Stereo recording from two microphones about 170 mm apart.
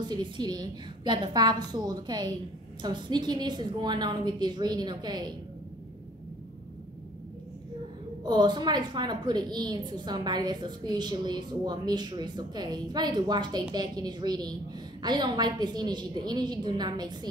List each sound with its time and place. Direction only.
0.0 s a woman's voice: 25° right (ahead or behind)
8.3 s a woman's voice: 25° right (ahead or behind)